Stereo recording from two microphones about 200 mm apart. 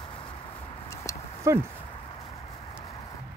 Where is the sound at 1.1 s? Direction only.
15° left (ahead or behind).